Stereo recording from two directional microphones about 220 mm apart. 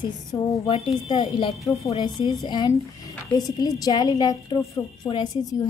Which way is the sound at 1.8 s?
30° left (ahead or behind).